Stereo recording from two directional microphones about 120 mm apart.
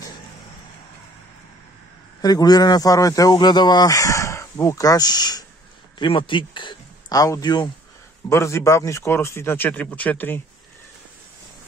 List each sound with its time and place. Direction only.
2.2 s speech: 35° left (ahead or behind)
7.2 s speech: 30° left (ahead or behind)
8.3 s speech: 25° left (ahead or behind)